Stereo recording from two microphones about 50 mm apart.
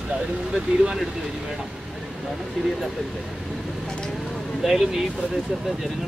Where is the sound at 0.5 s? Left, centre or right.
Centre.